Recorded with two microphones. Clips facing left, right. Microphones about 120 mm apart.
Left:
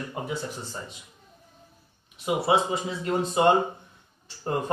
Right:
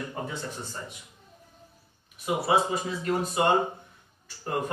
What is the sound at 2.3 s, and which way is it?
Speech, 20° left (ahead or behind).